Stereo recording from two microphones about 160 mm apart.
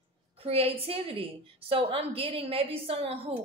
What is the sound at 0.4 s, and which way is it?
A woman's voice, 35° right (ahead or behind).